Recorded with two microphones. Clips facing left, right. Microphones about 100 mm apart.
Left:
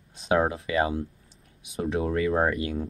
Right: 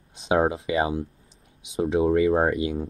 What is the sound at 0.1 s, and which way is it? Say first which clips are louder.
Speech: right 2 dB; 20° right (ahead or behind).